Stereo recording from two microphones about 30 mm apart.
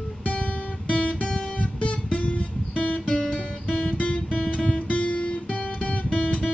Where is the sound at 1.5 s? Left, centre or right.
Left.